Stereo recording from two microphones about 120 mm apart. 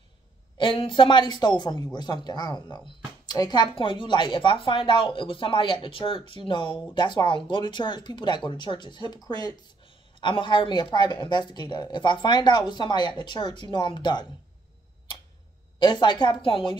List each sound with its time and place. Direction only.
0.6 s speech: 45° left (ahead or behind)
15.8 s speech: 40° left (ahead or behind)